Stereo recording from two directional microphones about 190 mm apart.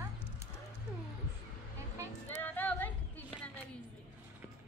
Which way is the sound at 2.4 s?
10° left (ahead or behind).